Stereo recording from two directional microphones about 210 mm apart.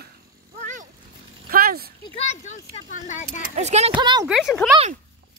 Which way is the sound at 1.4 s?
45° right (ahead or behind).